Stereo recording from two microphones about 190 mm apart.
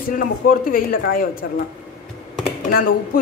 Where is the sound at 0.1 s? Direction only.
50° left (ahead or behind).